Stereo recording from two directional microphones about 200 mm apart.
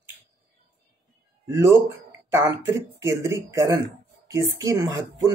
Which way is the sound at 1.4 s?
15° right (ahead or behind).